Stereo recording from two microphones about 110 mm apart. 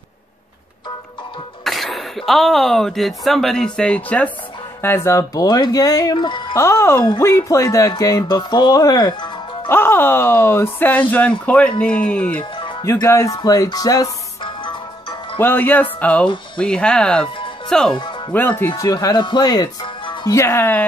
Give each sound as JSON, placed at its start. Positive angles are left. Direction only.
{"t": 1.6, "sound": "speech", "side_deg": 0}
{"t": 4.8, "sound": "speech", "side_deg": 25}
{"t": 6.1, "sound": "speech", "side_deg": 45}
{"t": 6.5, "sound": "speech", "side_deg": 25}
{"t": 9.7, "sound": "speech", "side_deg": 20}
{"t": 12.8, "sound": "speech", "side_deg": 30}
{"t": 14.4, "sound": "music", "side_deg": 45}
{"t": 15.3, "sound": "speech", "side_deg": 20}
{"t": 18.3, "sound": "speech", "side_deg": 15}
{"t": 18.8, "sound": "speech", "side_deg": 35}
{"t": 20.2, "sound": "speech", "side_deg": 25}